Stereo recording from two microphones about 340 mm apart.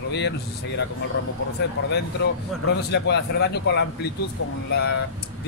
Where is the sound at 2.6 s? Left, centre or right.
Left.